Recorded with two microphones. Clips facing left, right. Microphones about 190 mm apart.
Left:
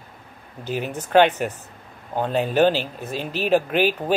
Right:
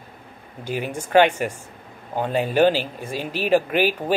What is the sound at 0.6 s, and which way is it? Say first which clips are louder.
Speech: even; 10° right (ahead or behind).